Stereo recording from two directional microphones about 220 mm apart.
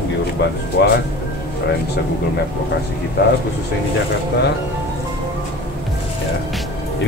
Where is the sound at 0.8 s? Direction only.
45° left (ahead or behind).